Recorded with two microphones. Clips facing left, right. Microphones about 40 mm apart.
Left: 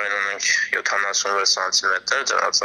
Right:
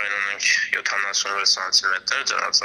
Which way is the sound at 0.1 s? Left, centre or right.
Right.